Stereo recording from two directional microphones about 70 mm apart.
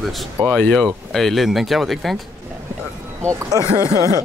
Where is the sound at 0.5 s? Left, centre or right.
Centre.